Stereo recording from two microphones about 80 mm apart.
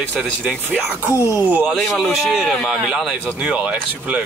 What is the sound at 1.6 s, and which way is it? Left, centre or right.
Speech, centre.